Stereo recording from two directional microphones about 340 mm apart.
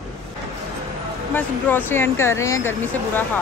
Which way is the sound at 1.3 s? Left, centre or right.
Centre.